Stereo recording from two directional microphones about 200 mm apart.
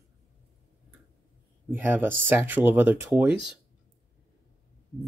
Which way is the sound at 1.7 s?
10° right (ahead or behind).